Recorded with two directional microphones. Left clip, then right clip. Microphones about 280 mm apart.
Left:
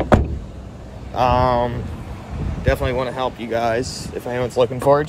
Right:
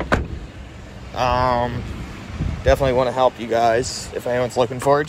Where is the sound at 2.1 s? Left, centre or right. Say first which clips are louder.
Even; left.